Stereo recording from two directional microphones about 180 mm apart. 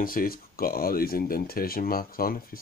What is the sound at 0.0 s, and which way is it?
Speech, 55° left (ahead or behind).